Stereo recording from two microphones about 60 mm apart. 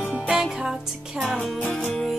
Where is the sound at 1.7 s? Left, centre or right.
Centre.